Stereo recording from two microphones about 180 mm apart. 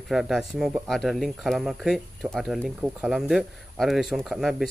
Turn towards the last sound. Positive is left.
turn(degrees=0)  # may be behind; listen again after turning